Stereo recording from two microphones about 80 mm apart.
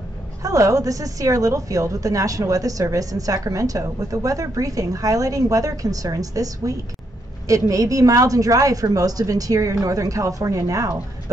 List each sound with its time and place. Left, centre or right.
0.4 s a woman's voice: right